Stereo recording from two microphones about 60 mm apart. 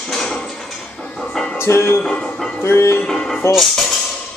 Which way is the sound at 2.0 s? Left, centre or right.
Centre.